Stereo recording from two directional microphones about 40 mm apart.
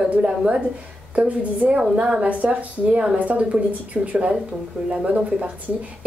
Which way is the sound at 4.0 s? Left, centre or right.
Centre.